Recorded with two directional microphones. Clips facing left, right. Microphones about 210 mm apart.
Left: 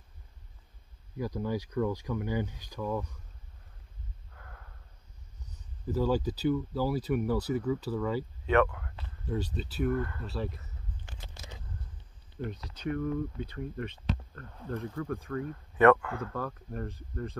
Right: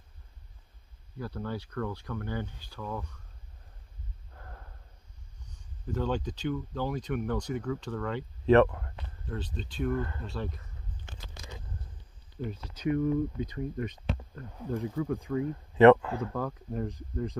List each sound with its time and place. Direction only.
1.1 s speech: 10° left (ahead or behind)
4.3 s snort: 35° right (ahead or behind)
5.9 s speech: 5° left (ahead or behind)
8.5 s speech: 35° right (ahead or behind)
9.3 s speech: 10° left (ahead or behind)
9.9 s speech: 25° right (ahead or behind)
10.2 s speech: 5° left (ahead or behind)
11.1 s a sound: 20° right (ahead or behind)
12.4 s speech: 5° right (ahead or behind); by 16.3 s 25° right (ahead or behind)
16.6 s speech: 15° right (ahead or behind)